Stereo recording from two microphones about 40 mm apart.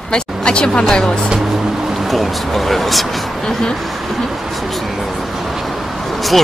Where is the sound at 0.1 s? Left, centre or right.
Left.